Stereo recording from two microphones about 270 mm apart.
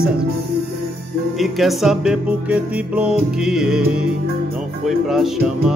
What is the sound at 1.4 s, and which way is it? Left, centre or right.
Music, centre.